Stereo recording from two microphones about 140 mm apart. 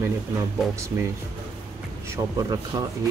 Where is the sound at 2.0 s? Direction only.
25° right (ahead or behind).